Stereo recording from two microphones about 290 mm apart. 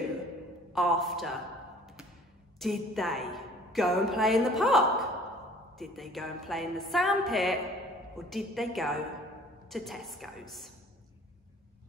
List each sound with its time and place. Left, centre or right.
0.7 s a woman's voice: centre
2.6 s a woman's voice: centre